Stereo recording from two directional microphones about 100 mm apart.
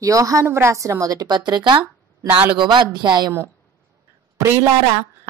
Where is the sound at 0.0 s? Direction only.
35° right (ahead or behind).